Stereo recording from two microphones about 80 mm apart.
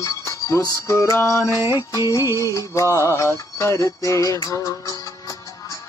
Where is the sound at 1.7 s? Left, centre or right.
Left.